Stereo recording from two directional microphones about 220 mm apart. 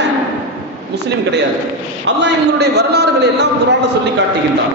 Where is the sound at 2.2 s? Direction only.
50° right (ahead or behind).